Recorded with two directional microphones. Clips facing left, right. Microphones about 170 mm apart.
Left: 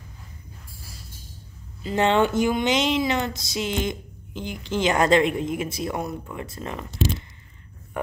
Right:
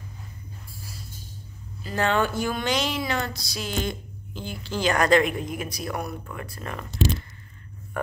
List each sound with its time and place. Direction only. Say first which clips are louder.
1.8 s speech: left 4 dB; 20° left (ahead or behind)